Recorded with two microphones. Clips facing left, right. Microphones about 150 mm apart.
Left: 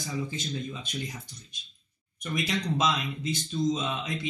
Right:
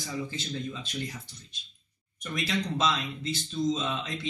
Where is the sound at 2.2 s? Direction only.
15° left (ahead or behind).